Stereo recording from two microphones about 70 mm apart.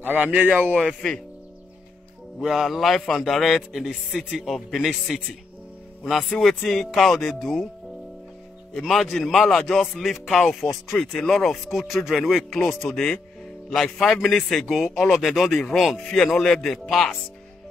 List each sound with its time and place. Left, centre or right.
0.3 s a man's voice: centre
0.7 s speech: centre
2.4 s speech: centre
8.7 s speech: centre
15.5 s speech: centre